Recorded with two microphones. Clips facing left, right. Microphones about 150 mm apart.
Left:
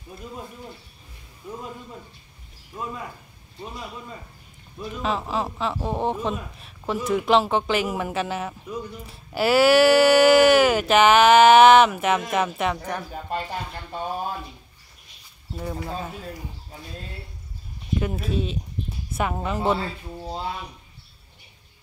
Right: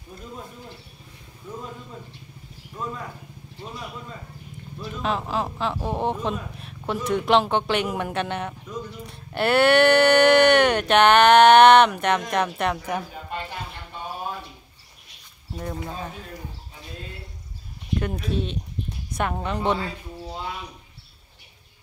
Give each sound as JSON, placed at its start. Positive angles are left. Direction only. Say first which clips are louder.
{"t": 2.8, "sound": "speech", "louder": "right 1 dB", "side_deg": 10}
{"t": 4.7, "sound": "speech", "louder": "even", "side_deg": 5}
{"t": 13.3, "sound": "a sound", "louder": "left 4 dB", "side_deg": 40}
{"t": 15.6, "sound": "speech", "louder": "left 1 dB", "side_deg": 5}
{"t": 17.9, "sound": "speech", "louder": "left 1 dB", "side_deg": 5}